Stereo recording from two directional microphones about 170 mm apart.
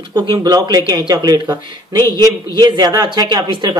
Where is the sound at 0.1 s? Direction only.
25° right (ahead or behind).